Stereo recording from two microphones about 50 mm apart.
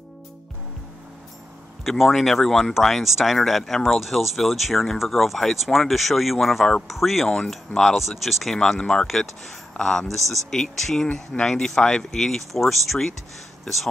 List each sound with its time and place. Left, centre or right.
1.9 s speech: centre
8.5 s speech: centre
9.8 s speech: centre
10.0 s speech: centre